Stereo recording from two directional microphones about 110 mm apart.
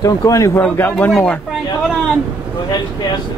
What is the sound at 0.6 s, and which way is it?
Speech, 15° left (ahead or behind).